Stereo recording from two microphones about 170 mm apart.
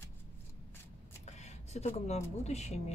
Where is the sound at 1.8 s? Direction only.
40° left (ahead or behind).